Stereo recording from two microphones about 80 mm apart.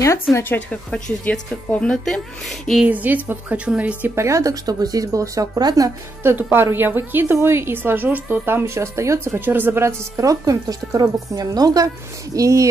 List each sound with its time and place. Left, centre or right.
0.3 s speech: left
0.7 s speech: centre
2.9 s a woman's voice: right
4.1 s speech: right
6.2 s a woman's voice: right